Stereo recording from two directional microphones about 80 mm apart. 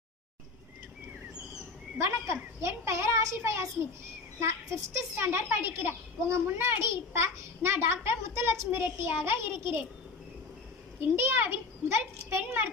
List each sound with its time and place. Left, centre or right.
2.0 s a sound: right
4.4 s a woman's voice: right
11.0 s a child's voice: right